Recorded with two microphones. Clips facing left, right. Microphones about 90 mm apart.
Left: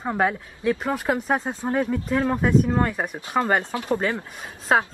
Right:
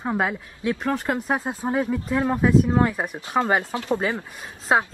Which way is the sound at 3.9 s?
15° right (ahead or behind).